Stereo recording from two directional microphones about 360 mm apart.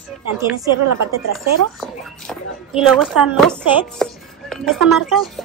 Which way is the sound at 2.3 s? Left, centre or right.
Centre.